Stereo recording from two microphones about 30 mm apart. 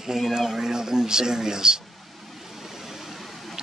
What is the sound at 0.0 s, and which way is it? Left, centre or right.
Speech, centre.